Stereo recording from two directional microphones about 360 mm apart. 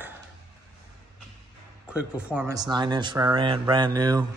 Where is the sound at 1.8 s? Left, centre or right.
Centre.